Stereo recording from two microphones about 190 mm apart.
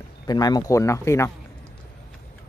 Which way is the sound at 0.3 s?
20° left (ahead or behind).